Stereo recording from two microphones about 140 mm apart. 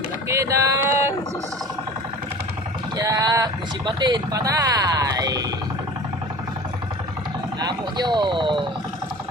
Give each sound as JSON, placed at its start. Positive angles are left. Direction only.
{"t": 0.3, "sound": "a sound", "side_deg": -20}
{"t": 3.0, "sound": "speech", "side_deg": -25}
{"t": 7.6, "sound": "speech", "side_deg": -30}